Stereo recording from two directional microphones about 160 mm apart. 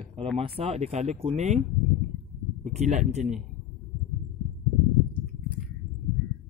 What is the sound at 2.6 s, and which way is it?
Speech, 50° right (ahead or behind).